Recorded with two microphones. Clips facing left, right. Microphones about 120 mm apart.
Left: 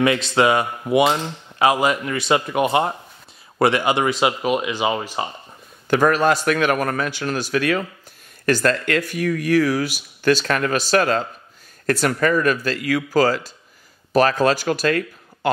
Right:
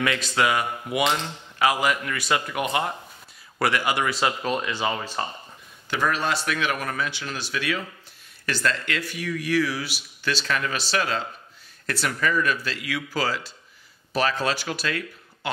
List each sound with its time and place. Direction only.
0.0 s speech: 25° left (ahead or behind)
5.9 s speech: 50° left (ahead or behind)